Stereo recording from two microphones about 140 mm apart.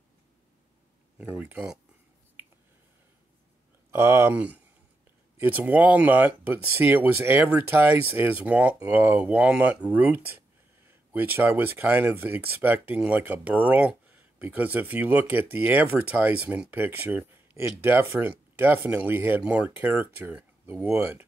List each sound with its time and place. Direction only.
1.1 s speech: 10° right (ahead or behind)
3.9 s speech: 15° right (ahead or behind)